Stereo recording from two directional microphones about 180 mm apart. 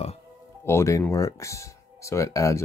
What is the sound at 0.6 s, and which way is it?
Speech, 15° left (ahead or behind).